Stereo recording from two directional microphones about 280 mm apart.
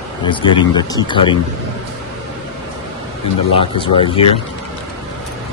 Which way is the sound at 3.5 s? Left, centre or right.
Centre.